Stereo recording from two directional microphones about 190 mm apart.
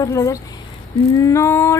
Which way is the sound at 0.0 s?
15° left (ahead or behind).